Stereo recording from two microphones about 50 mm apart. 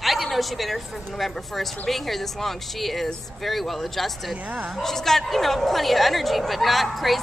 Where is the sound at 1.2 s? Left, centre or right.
Centre.